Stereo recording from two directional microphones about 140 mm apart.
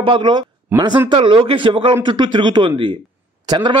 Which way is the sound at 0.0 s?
35° right (ahead or behind).